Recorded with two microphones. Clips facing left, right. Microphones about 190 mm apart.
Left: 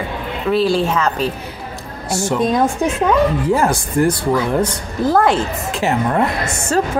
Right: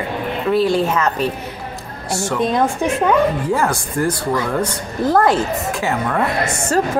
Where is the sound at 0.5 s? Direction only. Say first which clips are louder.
Even; 30° left (ahead or behind).